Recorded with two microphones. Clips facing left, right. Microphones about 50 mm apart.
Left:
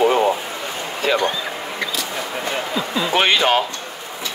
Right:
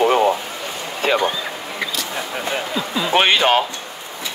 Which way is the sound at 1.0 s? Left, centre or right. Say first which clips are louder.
Right 1 dB; right.